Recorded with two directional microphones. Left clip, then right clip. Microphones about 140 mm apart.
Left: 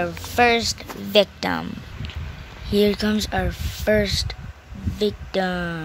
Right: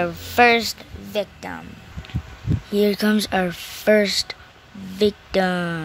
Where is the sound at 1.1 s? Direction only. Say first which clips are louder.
Left 8 dB; 25° left (ahead or behind).